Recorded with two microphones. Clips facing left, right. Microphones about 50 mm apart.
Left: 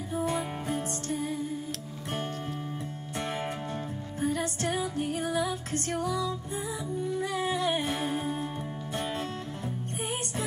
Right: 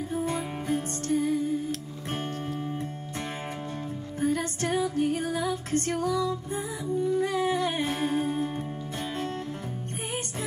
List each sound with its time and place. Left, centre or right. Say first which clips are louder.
0.2 s music: even; left
1.0 s music: right 6 dB; right
4.3 s music: right 2 dB; right